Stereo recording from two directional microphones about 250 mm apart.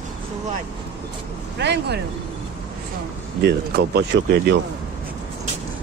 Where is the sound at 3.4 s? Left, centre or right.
Right.